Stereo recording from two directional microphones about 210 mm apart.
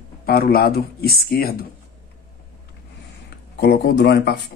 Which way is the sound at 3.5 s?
50° left (ahead or behind).